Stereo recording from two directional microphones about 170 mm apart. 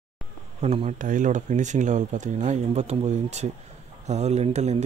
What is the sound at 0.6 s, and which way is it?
Speech, 40° right (ahead or behind).